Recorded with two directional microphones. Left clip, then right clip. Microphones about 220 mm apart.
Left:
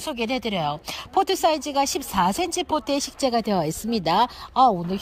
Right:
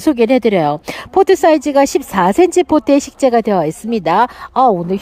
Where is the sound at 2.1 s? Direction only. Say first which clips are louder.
Right 8 dB; 55° right (ahead or behind).